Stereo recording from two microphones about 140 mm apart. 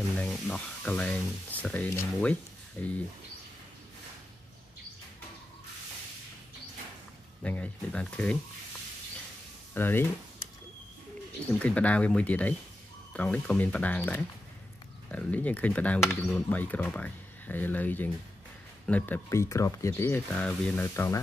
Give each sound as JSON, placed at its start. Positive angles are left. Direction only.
{"t": 0.1, "sound": "speech", "side_deg": 10}
{"t": 7.4, "sound": "speech", "side_deg": 10}
{"t": 9.8, "sound": "speech", "side_deg": 15}
{"t": 11.6, "sound": "speech", "side_deg": 10}
{"t": 20.8, "sound": "speech", "side_deg": 20}